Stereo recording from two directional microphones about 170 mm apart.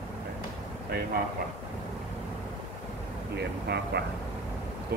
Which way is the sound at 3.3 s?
75° right (ahead or behind).